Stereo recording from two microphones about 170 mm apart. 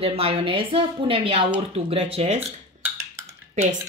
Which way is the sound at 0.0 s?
35° right (ahead or behind).